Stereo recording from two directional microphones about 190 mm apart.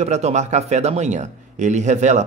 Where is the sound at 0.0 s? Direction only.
35° right (ahead or behind).